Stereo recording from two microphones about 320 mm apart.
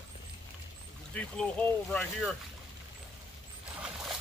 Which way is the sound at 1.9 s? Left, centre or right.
Centre.